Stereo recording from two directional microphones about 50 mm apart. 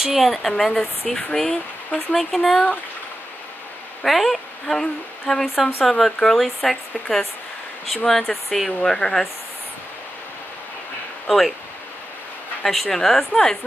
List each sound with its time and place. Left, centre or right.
0.0 s speech: centre
4.0 s a woman's voice: centre
11.2 s speech: centre
12.6 s speech: centre